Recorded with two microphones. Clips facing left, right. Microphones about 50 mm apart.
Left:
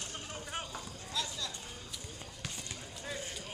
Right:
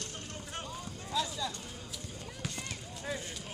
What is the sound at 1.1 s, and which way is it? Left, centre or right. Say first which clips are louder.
Clip-clop: right 5 dB; centre.